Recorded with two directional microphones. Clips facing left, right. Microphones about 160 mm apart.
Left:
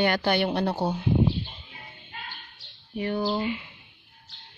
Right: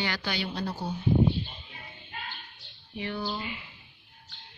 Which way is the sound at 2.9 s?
45° left (ahead or behind).